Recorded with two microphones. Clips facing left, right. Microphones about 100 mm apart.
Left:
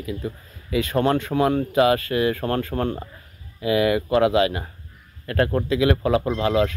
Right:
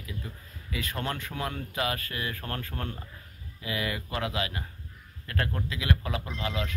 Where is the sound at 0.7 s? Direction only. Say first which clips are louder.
Left 13 dB; 80° left; by 3.1 s 55° left (ahead or behind).